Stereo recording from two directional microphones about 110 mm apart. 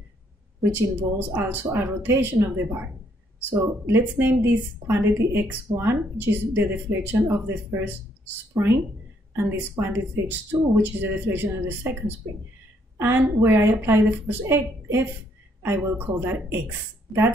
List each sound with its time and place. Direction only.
0.6 s a woman's voice: 20° right (ahead or behind)
3.8 s a woman's voice: 20° right (ahead or behind)
9.3 s a woman's voice: 25° right (ahead or behind)